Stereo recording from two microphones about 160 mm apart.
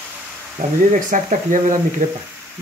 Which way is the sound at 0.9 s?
50° right (ahead or behind).